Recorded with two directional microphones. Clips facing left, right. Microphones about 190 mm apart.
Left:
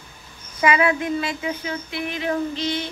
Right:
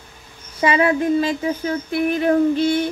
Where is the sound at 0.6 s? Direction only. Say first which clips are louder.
Right 3 dB; 30° right (ahead or behind); by 2.9 s 50° right (ahead or behind).